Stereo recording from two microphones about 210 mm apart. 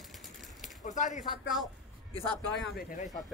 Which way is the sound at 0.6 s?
35° left (ahead or behind).